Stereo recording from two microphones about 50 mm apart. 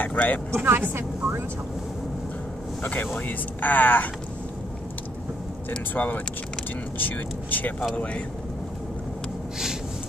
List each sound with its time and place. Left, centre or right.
0.0 s speech: left
0.5 s speech: right
2.8 s speech: left
5.9 s speech: left